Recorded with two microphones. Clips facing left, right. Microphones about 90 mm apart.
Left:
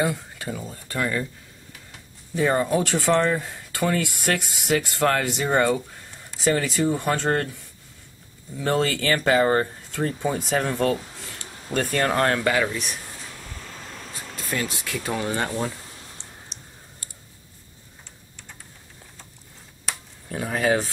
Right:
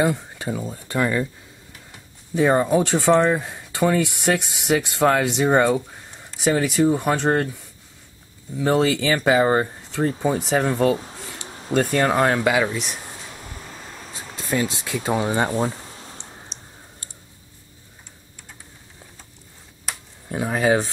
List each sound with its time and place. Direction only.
0.0 s speech: 20° right (ahead or behind)
2.3 s speech: 15° right (ahead or behind)
8.5 s speech: 10° right (ahead or behind)
11.1 s a sound: 15° right (ahead or behind)
11.8 s speech: 10° right (ahead or behind)
12.4 s a sound: 15° right (ahead or behind)
14.3 s bee: 20° right (ahead or behind)
20.2 s speech: 20° right (ahead or behind)